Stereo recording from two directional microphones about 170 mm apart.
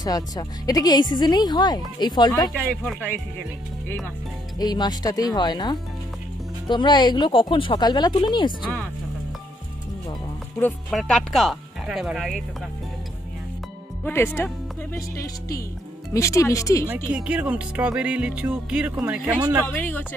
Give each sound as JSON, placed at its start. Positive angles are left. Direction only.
{"t": 0.0, "sound": "speech", "side_deg": 20}
{"t": 4.6, "sound": "speech", "side_deg": 25}
{"t": 10.9, "sound": "speech", "side_deg": 0}
{"t": 14.0, "sound": "speech", "side_deg": 15}
{"t": 16.1, "sound": "speech", "side_deg": 20}
{"t": 16.9, "sound": "speech", "side_deg": -5}
{"t": 19.6, "sound": "speech", "side_deg": 10}